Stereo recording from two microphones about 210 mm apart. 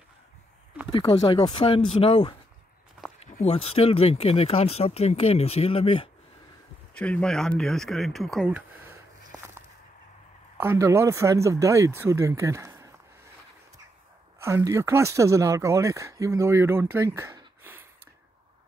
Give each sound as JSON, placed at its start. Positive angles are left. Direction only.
{"t": 0.9, "sound": "speech", "side_deg": 20}
{"t": 6.9, "sound": "speech", "side_deg": 5}
{"t": 10.6, "sound": "speech", "side_deg": -10}
{"t": 14.4, "sound": "speech", "side_deg": -15}